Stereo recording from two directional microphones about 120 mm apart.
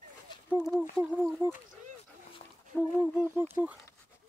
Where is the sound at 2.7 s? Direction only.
10° left (ahead or behind).